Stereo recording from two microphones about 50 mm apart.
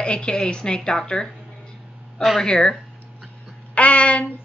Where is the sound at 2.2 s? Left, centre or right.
Centre.